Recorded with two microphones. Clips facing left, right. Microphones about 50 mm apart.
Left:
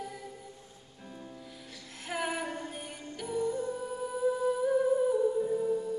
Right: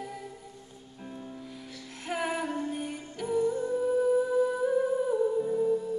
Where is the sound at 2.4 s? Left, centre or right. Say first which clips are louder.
Right 5 dB; right.